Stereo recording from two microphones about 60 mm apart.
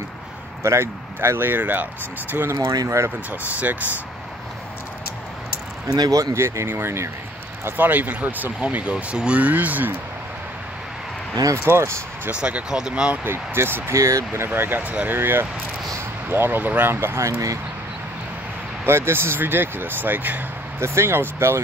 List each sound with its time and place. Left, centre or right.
0.7 s speech: right
2.5 s speech: right
3.3 s speech: right
5.9 s speech: right
6.3 s speech: right
7.7 s speech: right
11.5 s speech: right
12.3 s speech: right
13.2 s speech: right
13.9 s speech: right
15.1 s speech: right
18.9 s speech: right
20.8 s speech: right